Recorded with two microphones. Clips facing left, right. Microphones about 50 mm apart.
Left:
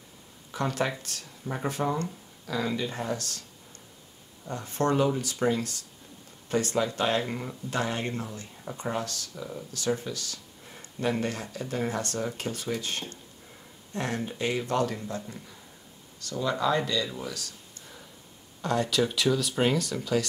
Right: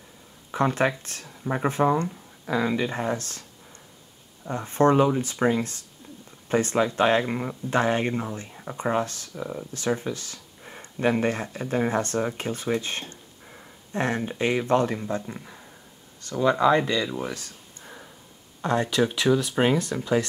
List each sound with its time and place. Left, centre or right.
0.5 s speech: right
4.5 s speech: right